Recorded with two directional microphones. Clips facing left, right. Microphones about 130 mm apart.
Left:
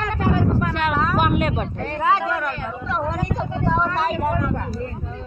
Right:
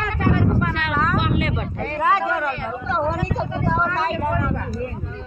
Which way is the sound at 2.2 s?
20° right (ahead or behind).